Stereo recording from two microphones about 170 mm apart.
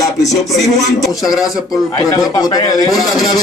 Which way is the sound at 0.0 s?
Centre (ahead or behind).